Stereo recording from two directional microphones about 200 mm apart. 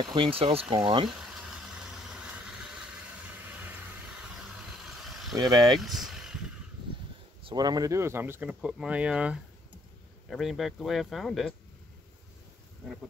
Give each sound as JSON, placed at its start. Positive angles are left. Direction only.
{"t": 0.0, "sound": "speech", "side_deg": -25}
{"t": 5.0, "sound": "a sound", "side_deg": 0}
{"t": 5.7, "sound": "speech", "side_deg": 0}
{"t": 7.4, "sound": "speech", "side_deg": -20}